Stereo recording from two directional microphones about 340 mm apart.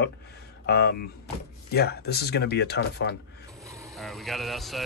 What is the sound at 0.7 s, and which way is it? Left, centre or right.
Speech, left.